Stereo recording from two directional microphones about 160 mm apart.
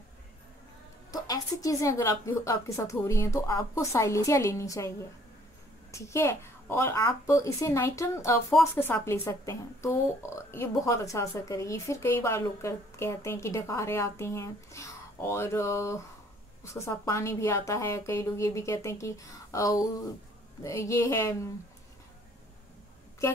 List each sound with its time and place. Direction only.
1.1 s a woman's voice: 20° left (ahead or behind)